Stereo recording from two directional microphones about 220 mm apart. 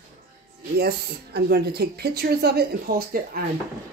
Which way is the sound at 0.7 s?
45° right (ahead or behind).